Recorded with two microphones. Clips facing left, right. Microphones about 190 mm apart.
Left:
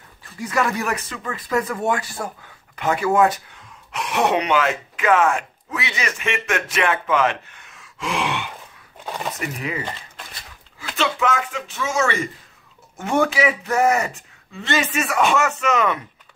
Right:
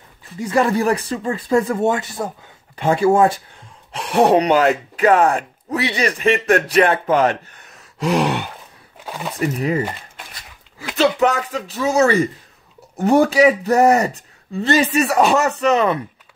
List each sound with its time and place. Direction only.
0.4 s speech: 30° right (ahead or behind)
9.0 s a sound: 5° right (ahead or behind)
9.4 s speech: 40° right (ahead or behind)
11.0 s speech: 40° right (ahead or behind)